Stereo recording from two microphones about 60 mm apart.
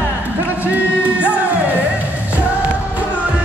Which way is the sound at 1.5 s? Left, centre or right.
Right.